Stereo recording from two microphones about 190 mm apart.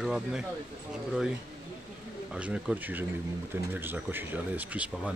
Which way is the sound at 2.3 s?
5° right (ahead or behind).